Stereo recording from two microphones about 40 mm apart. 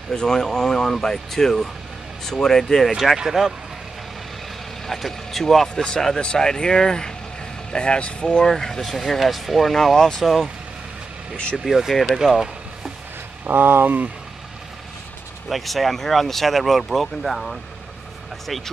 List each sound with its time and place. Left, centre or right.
0.1 s speech: centre
3.2 s speech: centre
4.8 s speech: centre
6.1 s speech: left
8.5 s speech: centre
10.2 s speech: centre
11.5 s speech: centre
12.3 s vehicle: centre
13.4 s speech: right
15.4 s speech: centre